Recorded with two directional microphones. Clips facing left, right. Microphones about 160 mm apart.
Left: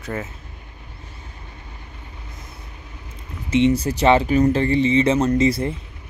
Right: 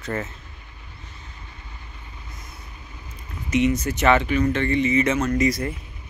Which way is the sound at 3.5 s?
30° left (ahead or behind).